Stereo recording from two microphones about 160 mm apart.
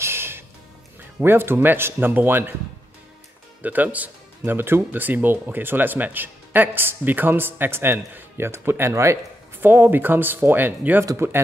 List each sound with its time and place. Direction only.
0.0 s music: 15° right (ahead or behind)
1.2 s speech: 15° right (ahead or behind)
3.6 s speech: 10° right (ahead or behind)